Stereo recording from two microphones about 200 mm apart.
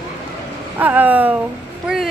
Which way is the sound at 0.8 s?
10° right (ahead or behind).